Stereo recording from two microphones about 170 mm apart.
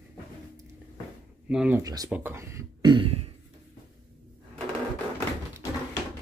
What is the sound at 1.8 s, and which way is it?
Speech, 20° right (ahead or behind).